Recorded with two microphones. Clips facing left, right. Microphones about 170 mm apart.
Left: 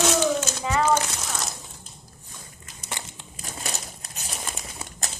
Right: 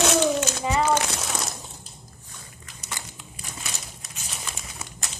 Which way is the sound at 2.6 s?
25° left (ahead or behind).